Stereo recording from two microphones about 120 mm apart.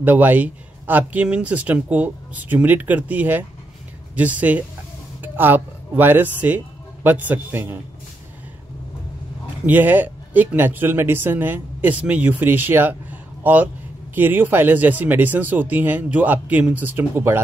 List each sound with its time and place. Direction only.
0.0 s speech: 15° right (ahead or behind)
9.7 s a man's voice: 15° right (ahead or behind)